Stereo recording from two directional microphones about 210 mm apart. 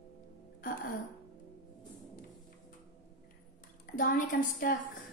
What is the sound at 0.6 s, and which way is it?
Speech, 40° left (ahead or behind).